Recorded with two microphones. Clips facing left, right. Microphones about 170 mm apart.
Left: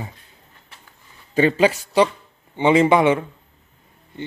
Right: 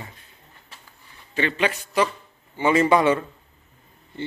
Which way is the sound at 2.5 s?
15° left (ahead or behind).